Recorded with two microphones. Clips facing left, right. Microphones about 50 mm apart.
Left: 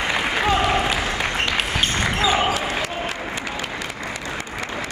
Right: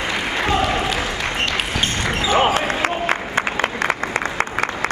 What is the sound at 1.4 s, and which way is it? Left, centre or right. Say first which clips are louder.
Basketball bounce: right 2 dB; centre.